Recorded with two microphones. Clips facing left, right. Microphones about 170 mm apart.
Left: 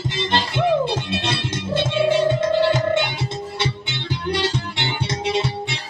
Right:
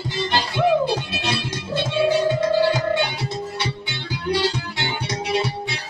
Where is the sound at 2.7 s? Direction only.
25° left (ahead or behind).